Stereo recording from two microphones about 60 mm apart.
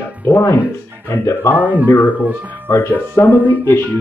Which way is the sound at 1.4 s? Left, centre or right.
Left.